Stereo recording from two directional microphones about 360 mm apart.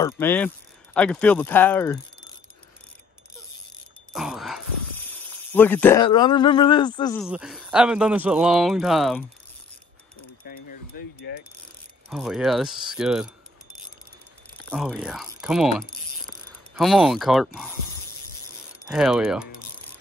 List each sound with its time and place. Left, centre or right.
0.0 s speech: centre
4.1 s a sound: centre
5.0 s speech: centre
7.2 s speech: centre
11.3 s mechanisms: left
12.1 s speech: centre
14.7 s speech: centre
16.3 s mechanisms: centre
18.9 s speech: centre